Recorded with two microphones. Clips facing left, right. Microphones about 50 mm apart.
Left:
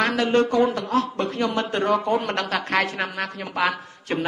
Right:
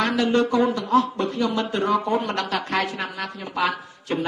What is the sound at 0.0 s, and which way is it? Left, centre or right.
A man's voice, left.